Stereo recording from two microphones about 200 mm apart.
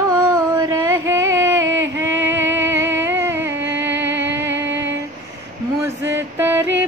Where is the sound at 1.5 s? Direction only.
80° right.